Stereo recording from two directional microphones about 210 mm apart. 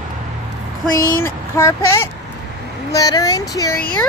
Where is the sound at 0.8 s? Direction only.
15° left (ahead or behind).